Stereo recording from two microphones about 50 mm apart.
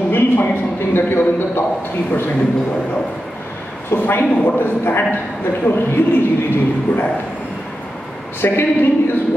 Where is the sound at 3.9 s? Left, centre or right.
Left.